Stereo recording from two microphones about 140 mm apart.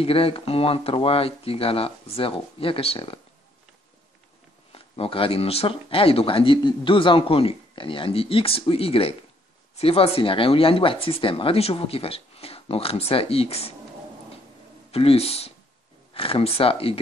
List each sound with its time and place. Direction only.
0.0 s speech: 40° left (ahead or behind)
4.7 s speech: 40° left (ahead or behind)
14.9 s speech: 45° left (ahead or behind)